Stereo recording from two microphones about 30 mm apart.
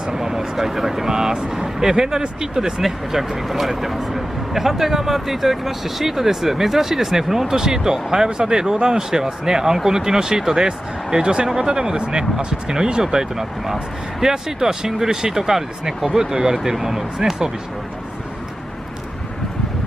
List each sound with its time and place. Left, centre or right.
0.0 s speech: centre
2.8 s speech: centre